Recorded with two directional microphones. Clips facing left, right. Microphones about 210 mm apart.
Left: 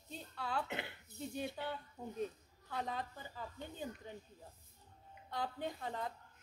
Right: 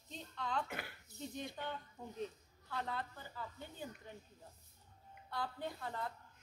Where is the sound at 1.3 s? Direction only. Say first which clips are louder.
Left 3 dB; 10° left (ahead or behind).